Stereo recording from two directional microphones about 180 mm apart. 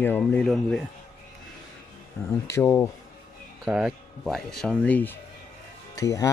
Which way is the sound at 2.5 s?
15° left (ahead or behind).